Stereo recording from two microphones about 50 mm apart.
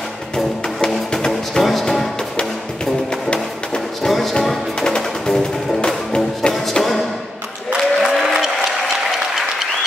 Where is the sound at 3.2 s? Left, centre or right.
Centre.